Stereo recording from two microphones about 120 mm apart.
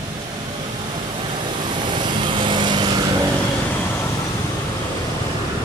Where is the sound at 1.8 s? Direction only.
40° right (ahead or behind).